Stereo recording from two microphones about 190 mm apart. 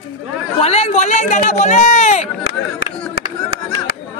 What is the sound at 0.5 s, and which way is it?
Speech, 30° left (ahead or behind).